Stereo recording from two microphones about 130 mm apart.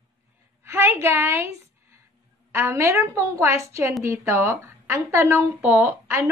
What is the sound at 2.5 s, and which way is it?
Speech, 20° right (ahead or behind).